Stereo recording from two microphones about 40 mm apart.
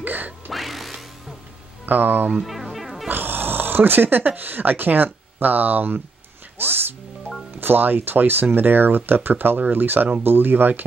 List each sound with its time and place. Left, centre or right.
0.0 s music: right
0.5 s music: centre
1.9 s speech: right
2.4 s music: centre
3.1 s speech: right